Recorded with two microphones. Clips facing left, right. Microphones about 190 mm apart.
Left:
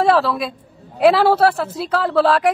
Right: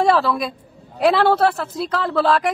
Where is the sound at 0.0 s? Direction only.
Centre (ahead or behind).